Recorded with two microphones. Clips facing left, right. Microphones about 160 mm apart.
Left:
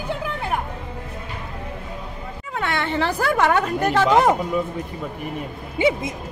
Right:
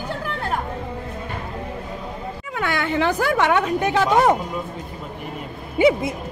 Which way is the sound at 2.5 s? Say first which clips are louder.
Right 1 dB; 30° left (ahead or behind).